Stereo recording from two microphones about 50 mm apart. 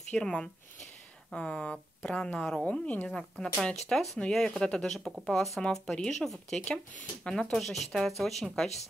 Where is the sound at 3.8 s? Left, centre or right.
Centre.